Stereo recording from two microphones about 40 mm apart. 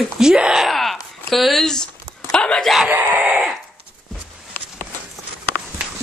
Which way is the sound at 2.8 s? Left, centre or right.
Right.